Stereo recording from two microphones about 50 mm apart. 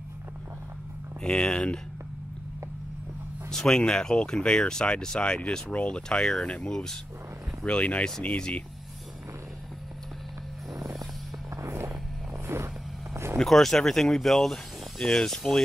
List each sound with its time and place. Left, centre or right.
1.2 s speech: centre
3.4 s speech: centre
7.6 s speech: left
11.5 s vehicle: right
13.1 s vehicle: right
13.4 s speech: centre